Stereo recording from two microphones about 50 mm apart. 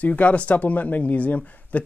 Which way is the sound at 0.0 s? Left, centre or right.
Left.